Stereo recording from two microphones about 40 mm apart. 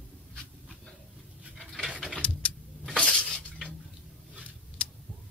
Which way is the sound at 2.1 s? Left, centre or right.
Left.